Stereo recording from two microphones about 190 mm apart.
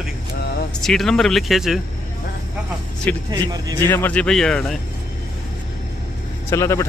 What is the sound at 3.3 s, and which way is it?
Speech, 20° right (ahead or behind).